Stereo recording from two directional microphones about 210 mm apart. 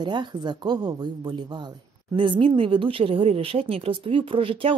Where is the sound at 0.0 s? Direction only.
20° right (ahead or behind).